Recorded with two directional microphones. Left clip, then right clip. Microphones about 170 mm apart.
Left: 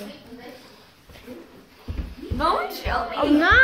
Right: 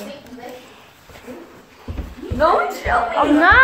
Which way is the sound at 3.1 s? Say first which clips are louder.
Right 4 dB; 5° left (ahead or behind).